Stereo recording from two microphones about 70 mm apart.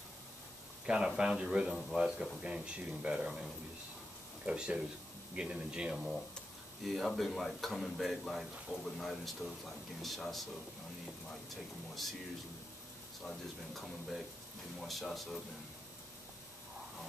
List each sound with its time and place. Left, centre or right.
0.8 s speech: centre
1.7 s speech: centre
2.0 s speech: centre
3.3 s speech: centre
4.5 s speech: centre
5.9 s speech: centre
11.9 s speech: centre
13.2 s speech: centre